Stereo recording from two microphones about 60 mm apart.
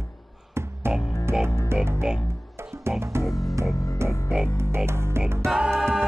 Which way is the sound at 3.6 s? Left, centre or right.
Right.